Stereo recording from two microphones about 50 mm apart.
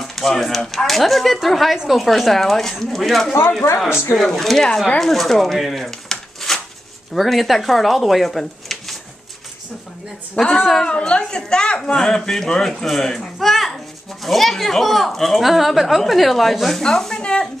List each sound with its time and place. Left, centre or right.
0.0 s a woman's voice: centre
10.4 s speech: centre
10.9 s a woman's voice: centre
17.2 s a sound: centre